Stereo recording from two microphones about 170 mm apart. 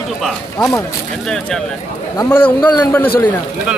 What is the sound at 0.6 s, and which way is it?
Speech, 15° left (ahead or behind).